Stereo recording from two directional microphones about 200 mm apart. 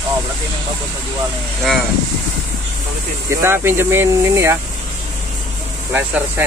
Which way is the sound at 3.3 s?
15° right (ahead or behind).